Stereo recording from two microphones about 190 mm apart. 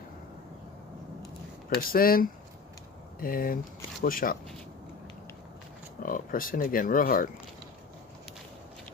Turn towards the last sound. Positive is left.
turn(degrees=50)  # may be behind; listen again after turning